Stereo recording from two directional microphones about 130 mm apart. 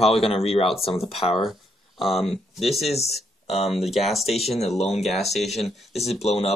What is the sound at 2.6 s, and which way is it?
Speech, centre (ahead or behind).